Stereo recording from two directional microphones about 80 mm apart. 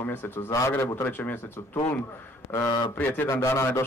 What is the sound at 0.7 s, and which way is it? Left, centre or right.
Speech, left.